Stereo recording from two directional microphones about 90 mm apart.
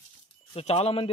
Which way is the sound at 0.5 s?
90° left.